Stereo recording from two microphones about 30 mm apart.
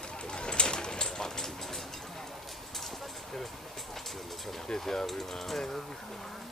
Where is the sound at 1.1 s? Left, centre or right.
Centre.